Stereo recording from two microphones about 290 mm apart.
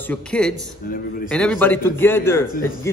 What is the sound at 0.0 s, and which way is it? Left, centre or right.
Speech, centre.